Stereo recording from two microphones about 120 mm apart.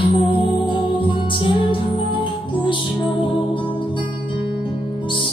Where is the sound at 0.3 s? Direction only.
45° left (ahead or behind).